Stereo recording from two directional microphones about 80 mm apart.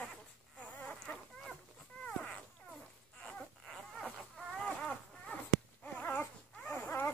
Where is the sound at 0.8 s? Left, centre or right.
Centre.